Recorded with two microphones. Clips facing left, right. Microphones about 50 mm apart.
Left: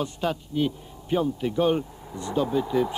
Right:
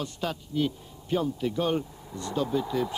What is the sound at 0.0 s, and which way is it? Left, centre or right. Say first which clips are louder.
A man's voice: left 5 dB; centre.